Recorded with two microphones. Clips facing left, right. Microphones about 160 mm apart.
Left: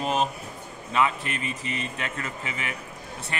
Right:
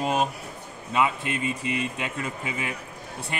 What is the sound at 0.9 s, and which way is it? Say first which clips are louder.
Speech: even; 10° right (ahead or behind).